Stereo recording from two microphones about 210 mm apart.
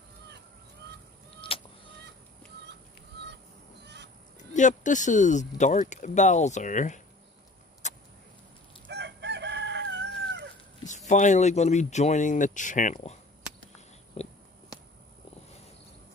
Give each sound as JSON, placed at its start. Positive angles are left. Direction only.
{"t": 3.8, "sound": "goose", "side_deg": -55}
{"t": 4.4, "sound": "speech", "side_deg": 35}
{"t": 7.8, "sound": "vehicle", "side_deg": 35}
{"t": 8.8, "sound": "chicken", "side_deg": -55}
{"t": 11.1, "sound": "speech", "side_deg": 35}
{"t": 14.2, "sound": "a sound", "side_deg": 30}